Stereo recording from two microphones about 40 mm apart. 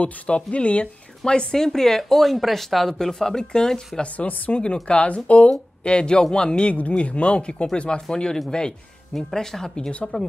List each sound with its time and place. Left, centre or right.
0.0 s speech: left
1.2 s speech: centre
6.7 s speech: left; by 10.2 s centre